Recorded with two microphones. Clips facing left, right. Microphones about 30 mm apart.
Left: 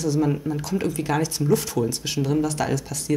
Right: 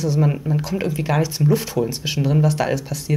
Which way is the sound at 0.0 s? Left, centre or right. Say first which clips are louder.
Right 2 dB; centre.